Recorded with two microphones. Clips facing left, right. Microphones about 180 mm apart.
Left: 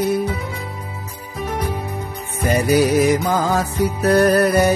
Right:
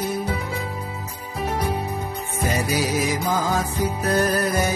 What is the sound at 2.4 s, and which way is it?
Music, 60° left (ahead or behind).